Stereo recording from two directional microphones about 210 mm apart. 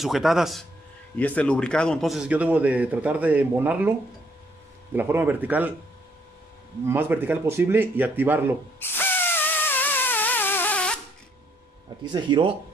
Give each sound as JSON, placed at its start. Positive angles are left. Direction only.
{"t": 0.0, "sound": "a man's voice", "side_deg": 0}
{"t": 4.9, "sound": "a man's voice", "side_deg": -10}
{"t": 6.9, "sound": "a man's voice", "side_deg": -10}
{"t": 8.7, "sound": "a sound", "side_deg": 10}
{"t": 12.0, "sound": "speech", "side_deg": -20}